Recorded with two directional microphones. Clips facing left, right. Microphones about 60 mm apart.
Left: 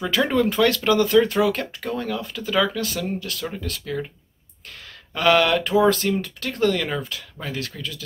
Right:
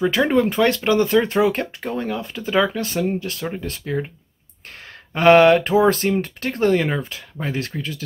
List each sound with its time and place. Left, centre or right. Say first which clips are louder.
0.0 s speech: right 3 dB; centre